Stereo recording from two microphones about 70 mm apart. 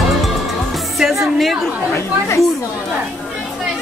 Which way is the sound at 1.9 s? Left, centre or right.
Left.